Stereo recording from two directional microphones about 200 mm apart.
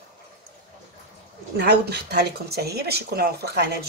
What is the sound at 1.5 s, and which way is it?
Speech, 55° right (ahead or behind).